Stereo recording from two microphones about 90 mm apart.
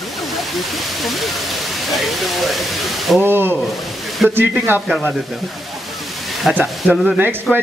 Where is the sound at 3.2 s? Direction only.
25° right (ahead or behind).